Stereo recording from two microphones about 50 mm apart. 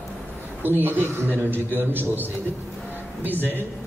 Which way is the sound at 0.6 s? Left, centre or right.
Right.